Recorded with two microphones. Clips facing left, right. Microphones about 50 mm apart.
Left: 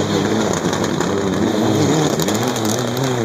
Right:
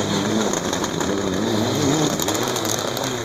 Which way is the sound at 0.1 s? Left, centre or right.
Left.